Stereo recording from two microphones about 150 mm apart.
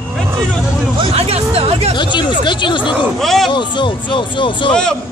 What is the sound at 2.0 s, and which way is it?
Speech, 30° left (ahead or behind).